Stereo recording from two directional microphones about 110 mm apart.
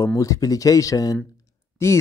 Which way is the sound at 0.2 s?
30° left (ahead or behind).